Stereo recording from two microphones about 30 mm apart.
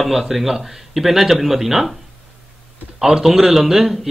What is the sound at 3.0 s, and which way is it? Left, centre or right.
Speech, centre.